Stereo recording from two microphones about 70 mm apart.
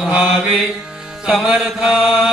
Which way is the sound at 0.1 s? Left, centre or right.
Centre.